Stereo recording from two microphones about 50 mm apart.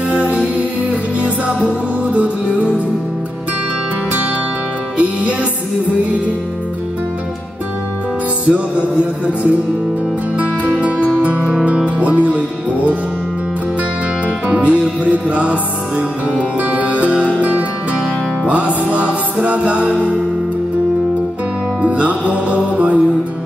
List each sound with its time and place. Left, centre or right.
0.1 s music: right
4.9 s music: right
8.5 s music: right
14.2 s music: right
21.8 s music: right